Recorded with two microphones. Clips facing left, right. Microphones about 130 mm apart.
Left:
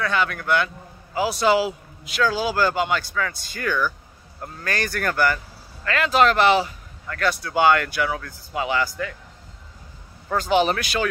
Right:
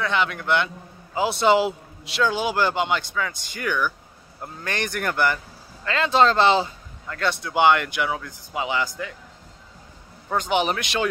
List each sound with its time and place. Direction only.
0.0 s speech: 20° right (ahead or behind)
10.3 s speech: 20° right (ahead or behind)